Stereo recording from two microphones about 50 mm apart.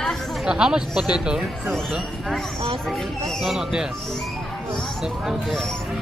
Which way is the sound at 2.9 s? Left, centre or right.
Centre.